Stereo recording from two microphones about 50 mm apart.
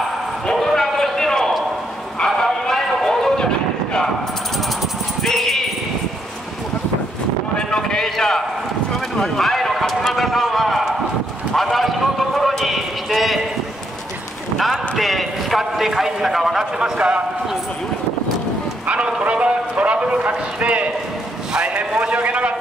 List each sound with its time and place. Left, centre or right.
0.5 s basketball bounce: centre
2.1 s vehicle: centre
5.2 s a sound: centre
7.5 s clip-clop: centre
9.1 s run: centre
11.5 s clip-clop: centre
14.6 s clip-clop: centre
18.9 s clip-clop: centre
21.5 s a sound: centre